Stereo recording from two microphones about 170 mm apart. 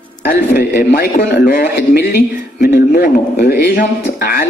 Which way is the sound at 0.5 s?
65° left (ahead or behind).